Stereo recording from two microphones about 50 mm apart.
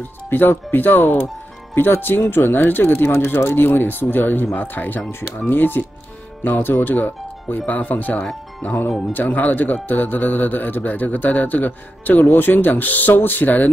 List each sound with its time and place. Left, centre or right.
0.3 s a man's voice: left